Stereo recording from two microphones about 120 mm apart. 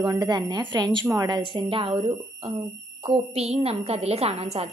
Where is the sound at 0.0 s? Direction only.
35° right (ahead or behind).